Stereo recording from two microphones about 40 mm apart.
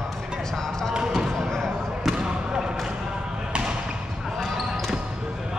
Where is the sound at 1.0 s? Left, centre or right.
Centre.